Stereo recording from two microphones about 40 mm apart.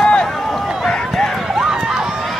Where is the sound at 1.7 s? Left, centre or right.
Centre.